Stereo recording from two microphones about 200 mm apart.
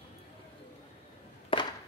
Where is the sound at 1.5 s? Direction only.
25° left (ahead or behind).